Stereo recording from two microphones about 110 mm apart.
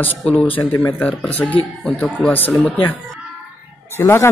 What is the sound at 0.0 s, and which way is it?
A man's voice, 15° left (ahead or behind).